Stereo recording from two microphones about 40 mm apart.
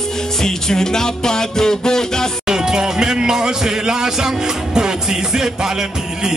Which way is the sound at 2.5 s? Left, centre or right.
Centre.